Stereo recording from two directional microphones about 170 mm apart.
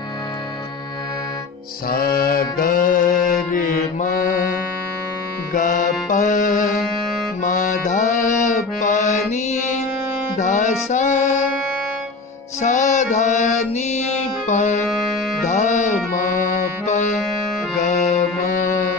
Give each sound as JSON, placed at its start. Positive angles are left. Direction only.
{"t": 1.9, "sound": "music", "side_deg": 60}
{"t": 7.4, "sound": "mantra", "side_deg": 50}
{"t": 10.4, "sound": "music", "side_deg": 45}
{"t": 12.6, "sound": "music", "side_deg": 45}